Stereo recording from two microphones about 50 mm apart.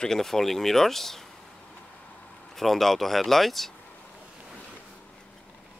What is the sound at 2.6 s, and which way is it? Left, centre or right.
Speech, centre.